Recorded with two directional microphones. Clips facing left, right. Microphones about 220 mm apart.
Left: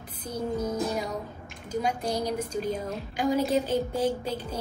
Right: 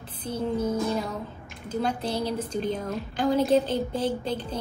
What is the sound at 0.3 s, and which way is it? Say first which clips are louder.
Music: right 3 dB; 30° right (ahead or behind).